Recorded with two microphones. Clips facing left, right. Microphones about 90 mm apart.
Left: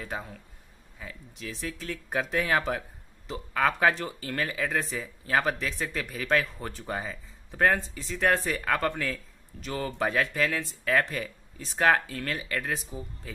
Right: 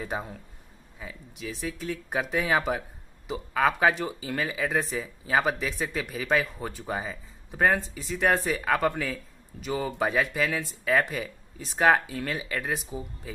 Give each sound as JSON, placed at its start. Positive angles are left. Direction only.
{"t": 0.0, "sound": "speech", "side_deg": -20}
{"t": 0.9, "sound": "speech", "side_deg": -10}